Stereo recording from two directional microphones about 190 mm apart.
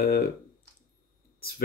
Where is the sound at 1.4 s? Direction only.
50° left (ahead or behind).